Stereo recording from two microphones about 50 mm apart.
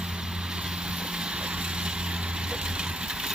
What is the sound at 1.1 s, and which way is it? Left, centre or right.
Vehicle, centre.